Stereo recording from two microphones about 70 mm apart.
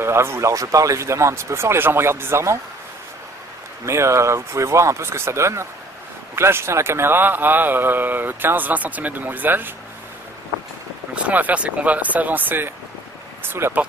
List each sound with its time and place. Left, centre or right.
0.0 s speech: right
3.8 s a man's voice: right
11.2 s a man's voice: right